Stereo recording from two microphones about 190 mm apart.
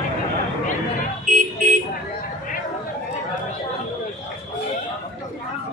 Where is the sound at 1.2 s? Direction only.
45° right (ahead or behind).